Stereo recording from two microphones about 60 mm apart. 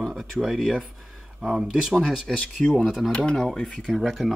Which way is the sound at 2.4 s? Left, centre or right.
Centre.